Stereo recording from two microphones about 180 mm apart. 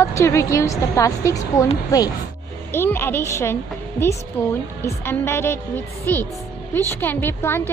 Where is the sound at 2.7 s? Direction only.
15° left (ahead or behind).